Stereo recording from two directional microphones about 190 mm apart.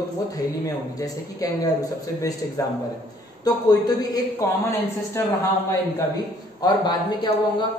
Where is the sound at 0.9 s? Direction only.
20° left (ahead or behind).